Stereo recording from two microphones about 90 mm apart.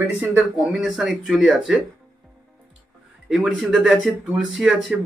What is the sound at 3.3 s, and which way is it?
Speech, centre (ahead or behind).